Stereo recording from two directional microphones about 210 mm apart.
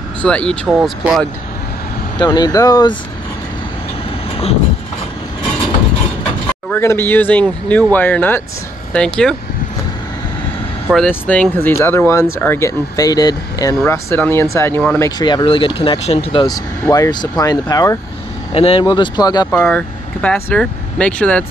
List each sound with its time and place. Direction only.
0.2 s speech: 5° left (ahead or behind)
2.1 s speech: 20° left (ahead or behind)
6.7 s speech: 10° left (ahead or behind)
11.1 s speech: 5° left (ahead or behind)
19.5 s speech: 5° left (ahead or behind)